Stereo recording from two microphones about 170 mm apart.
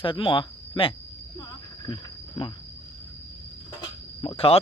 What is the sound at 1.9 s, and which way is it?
Cricket, 30° left (ahead or behind).